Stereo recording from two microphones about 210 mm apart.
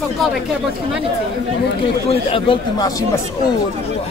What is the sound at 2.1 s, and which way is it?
Speech, 25° left (ahead or behind).